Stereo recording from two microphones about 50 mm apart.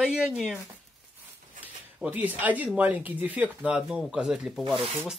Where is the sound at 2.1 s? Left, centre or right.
Right.